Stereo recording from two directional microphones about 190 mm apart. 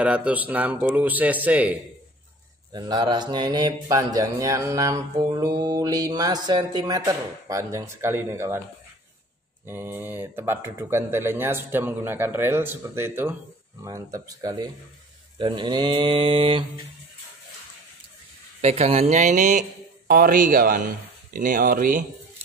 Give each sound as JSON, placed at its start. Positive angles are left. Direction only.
{"t": 0.0, "sound": "speech", "side_deg": -5}
{"t": 2.7, "sound": "mantra", "side_deg": -20}
{"t": 9.7, "sound": "speech", "side_deg": -10}
{"t": 13.8, "sound": "mantra", "side_deg": -15}
{"t": 18.6, "sound": "speech", "side_deg": -35}